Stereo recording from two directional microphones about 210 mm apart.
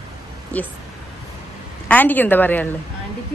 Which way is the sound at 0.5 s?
5° left (ahead or behind).